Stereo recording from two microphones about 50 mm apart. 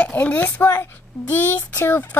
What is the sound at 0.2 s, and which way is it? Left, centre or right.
Speech, left.